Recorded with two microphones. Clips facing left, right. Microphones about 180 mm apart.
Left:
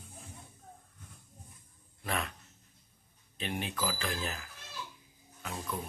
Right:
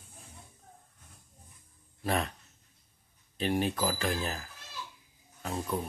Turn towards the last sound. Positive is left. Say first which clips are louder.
# right 5 dB
turn(degrees=-35)  # may be behind; listen again after turning